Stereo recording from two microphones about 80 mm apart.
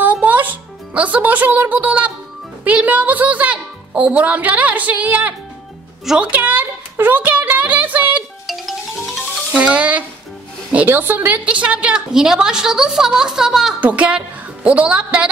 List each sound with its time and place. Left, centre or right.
0.0 s music: centre
2.6 s a woman's voice: centre
8.5 s music: centre
9.5 s a woman's voice: centre
13.7 s a woman's voice: centre